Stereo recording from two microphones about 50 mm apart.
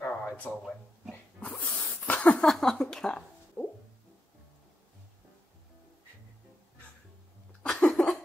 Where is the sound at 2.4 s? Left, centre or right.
Centre.